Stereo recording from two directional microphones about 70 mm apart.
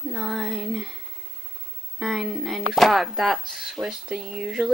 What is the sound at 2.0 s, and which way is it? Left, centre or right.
Speech, centre.